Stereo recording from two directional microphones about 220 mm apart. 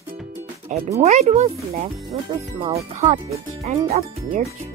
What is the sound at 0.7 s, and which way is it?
Speech, 35° right (ahead or behind).